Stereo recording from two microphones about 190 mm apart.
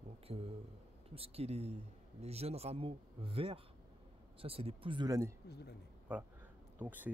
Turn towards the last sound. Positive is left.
turn(degrees=-10)  # may be behind; listen again after turning